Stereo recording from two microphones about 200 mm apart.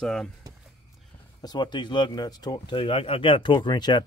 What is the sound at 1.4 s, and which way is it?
Speech, 20° left (ahead or behind).